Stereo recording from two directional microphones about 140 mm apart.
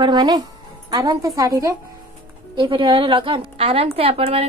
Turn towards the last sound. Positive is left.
turn(degrees=-45)  # may be behind; listen again after turning